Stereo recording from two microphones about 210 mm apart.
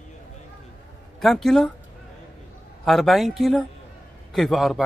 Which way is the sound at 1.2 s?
Centre (ahead or behind).